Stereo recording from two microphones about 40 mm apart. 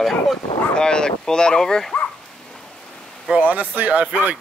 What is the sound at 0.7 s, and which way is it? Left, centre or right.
Speech, centre.